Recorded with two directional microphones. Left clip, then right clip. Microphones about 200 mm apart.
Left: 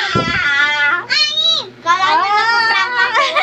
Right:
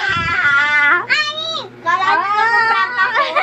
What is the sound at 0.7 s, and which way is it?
Cat, 40° right (ahead or behind).